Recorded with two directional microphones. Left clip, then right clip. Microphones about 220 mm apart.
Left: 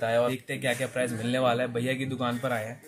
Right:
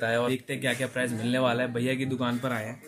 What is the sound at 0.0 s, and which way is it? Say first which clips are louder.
Speech: left 1 dB; centre (ahead or behind).